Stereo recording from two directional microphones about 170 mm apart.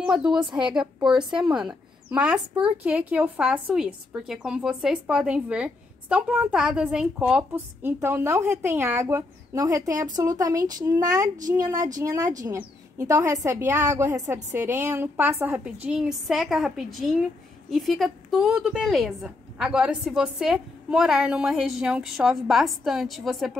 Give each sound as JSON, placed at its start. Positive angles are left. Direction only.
{"t": 0.0, "sound": "a woman's voice", "side_deg": -5}